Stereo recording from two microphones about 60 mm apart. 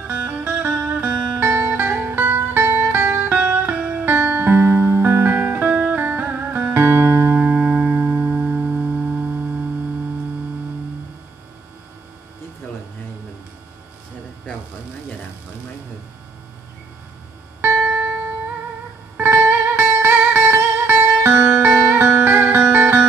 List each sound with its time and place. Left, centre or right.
0.0 s music: right
3.3 s music: centre
3.6 s music: right
6.7 s music: right
7.3 s music: right
17.6 s music: right
19.1 s music: right